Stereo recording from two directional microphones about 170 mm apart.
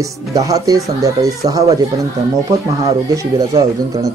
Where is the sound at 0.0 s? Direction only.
20° right (ahead or behind).